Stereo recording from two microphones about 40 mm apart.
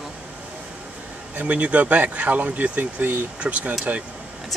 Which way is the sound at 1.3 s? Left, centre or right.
Right.